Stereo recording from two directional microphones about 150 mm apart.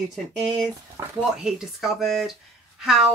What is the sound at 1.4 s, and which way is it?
Speech, centre (ahead or behind).